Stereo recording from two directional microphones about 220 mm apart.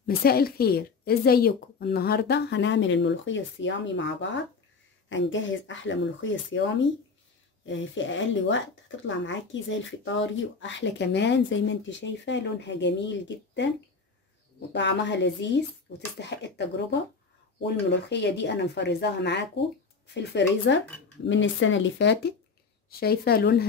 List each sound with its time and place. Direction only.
0.0 s speech: 45° left (ahead or behind)
7.6 s speech: 60° left (ahead or behind)
14.7 s speech: 55° left (ahead or behind)